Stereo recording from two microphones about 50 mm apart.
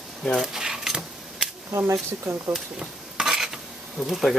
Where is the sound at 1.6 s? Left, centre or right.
Right.